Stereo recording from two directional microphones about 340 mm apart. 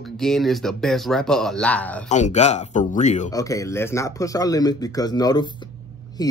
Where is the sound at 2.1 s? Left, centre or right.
Centre.